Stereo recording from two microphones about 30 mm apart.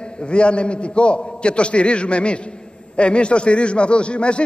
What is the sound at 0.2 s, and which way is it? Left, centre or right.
Speech, left.